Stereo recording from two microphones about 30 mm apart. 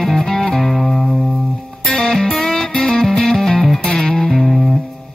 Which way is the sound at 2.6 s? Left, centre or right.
Left.